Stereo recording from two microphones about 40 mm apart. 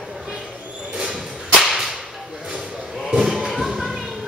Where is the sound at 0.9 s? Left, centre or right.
Centre.